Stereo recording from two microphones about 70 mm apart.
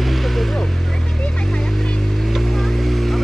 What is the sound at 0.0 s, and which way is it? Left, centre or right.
Vehicle, centre.